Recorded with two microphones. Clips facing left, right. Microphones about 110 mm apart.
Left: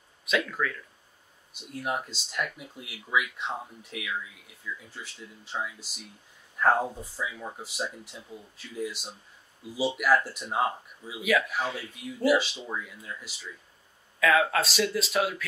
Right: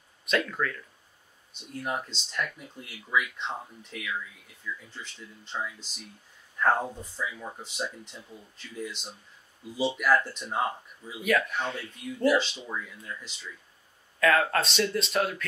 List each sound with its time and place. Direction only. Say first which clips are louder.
0.2 s speech: even; centre (ahead or behind)